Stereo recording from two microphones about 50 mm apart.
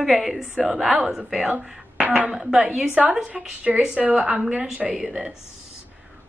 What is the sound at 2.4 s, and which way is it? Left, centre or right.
A woman's voice, centre.